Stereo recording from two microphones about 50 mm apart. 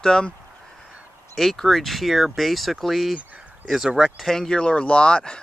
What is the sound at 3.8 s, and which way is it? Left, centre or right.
Speech, centre.